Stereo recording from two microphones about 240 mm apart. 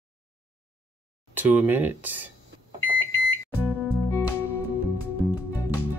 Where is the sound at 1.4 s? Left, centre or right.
Centre.